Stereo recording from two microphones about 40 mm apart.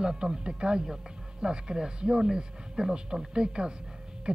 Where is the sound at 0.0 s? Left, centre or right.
Right.